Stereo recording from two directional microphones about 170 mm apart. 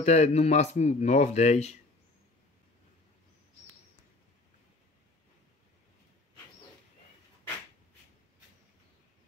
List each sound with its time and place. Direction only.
0.0 s speech: 40° left (ahead or behind)